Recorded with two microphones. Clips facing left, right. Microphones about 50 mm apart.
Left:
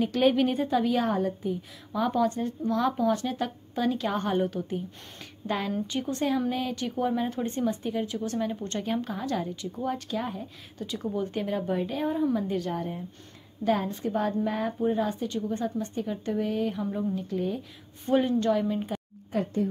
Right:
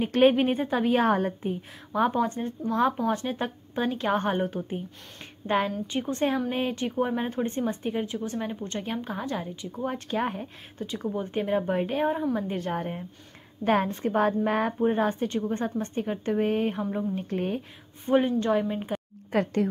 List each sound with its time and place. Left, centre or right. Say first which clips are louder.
0.0 s a woman's voice: right 2 dB; right
1.0 s a woman's voice: right 3 dB; right
2.0 s a woman's voice: right 1 dB; right
10.9 s a woman's voice: left 1 dB; right
18.0 s speech: right 1 dB; centre
19.3 s speech: right 3 dB; right